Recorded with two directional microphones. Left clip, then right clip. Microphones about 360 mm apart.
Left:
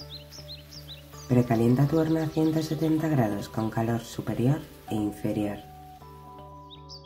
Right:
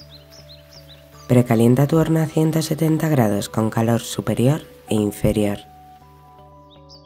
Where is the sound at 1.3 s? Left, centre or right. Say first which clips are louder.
Right 8 dB; right.